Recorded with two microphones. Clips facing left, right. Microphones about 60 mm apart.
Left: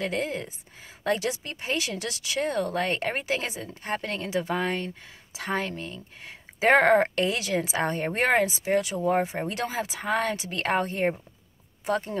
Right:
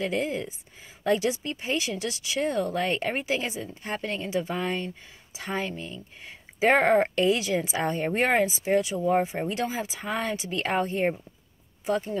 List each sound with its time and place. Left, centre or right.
0.0 s speech: left
9.5 s speech: left